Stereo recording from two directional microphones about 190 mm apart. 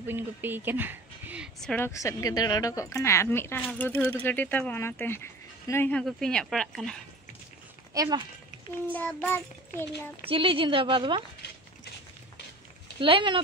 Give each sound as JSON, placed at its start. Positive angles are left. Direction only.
{"t": 0.0, "sound": "speech", "side_deg": -10}
{"t": 1.9, "sound": "speech", "side_deg": 15}
{"t": 7.9, "sound": "speech", "side_deg": -20}
{"t": 8.9, "sound": "speech", "side_deg": 10}
{"t": 10.2, "sound": "a woman's voice", "side_deg": -30}
{"t": 13.0, "sound": "a woman's voice", "side_deg": -25}